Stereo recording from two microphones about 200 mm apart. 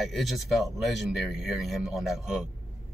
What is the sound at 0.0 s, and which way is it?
Speech, centre (ahead or behind).